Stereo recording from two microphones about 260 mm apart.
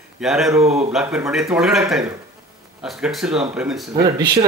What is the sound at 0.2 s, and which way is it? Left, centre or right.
Speech, centre.